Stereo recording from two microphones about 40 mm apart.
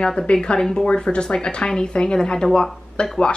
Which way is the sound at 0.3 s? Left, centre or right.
Left.